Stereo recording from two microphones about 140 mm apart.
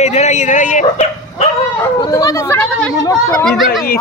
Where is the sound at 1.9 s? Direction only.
25° left (ahead or behind).